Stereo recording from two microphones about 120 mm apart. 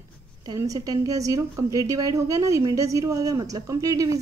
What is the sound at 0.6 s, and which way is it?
A woman's voice, 30° right (ahead or behind).